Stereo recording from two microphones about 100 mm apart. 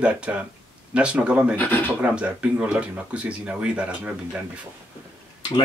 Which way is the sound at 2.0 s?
10° right (ahead or behind).